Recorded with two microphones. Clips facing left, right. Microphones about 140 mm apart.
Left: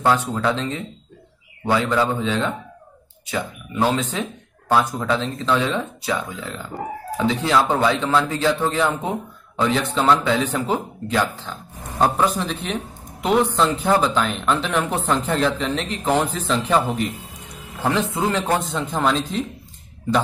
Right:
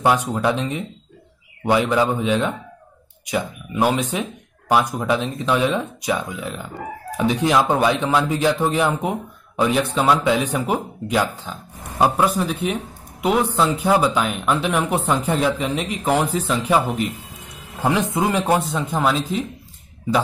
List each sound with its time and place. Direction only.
0.0 s speech: 15° right (ahead or behind)